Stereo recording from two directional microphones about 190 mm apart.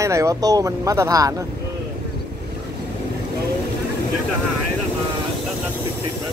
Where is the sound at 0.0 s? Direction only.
15° right (ahead or behind).